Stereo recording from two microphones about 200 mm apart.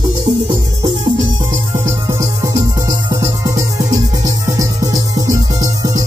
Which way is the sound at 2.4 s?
15° right (ahead or behind).